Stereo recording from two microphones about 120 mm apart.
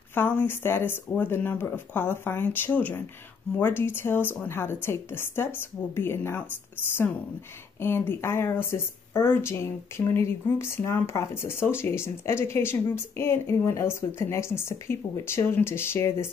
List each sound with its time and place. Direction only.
0.1 s speech: 15° left (ahead or behind)
7.8 s speech: 20° left (ahead or behind)